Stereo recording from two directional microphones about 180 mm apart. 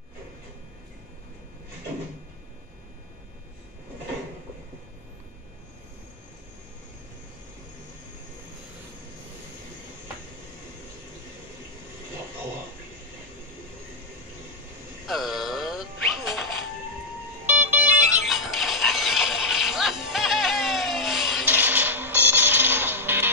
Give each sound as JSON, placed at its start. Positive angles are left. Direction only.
{"t": 15.0, "sound": "music", "side_deg": 0}
{"t": 17.5, "sound": "music", "side_deg": -10}